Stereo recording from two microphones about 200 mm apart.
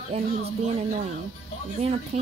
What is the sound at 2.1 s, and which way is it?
Speech, 35° right (ahead or behind).